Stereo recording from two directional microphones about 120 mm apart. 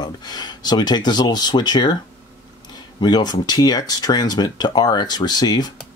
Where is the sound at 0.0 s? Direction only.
35° left (ahead or behind).